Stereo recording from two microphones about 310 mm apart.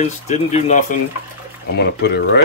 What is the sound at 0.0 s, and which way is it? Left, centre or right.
Speech, left.